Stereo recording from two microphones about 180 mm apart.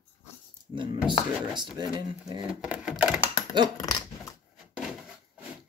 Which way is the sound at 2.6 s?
5° right (ahead or behind).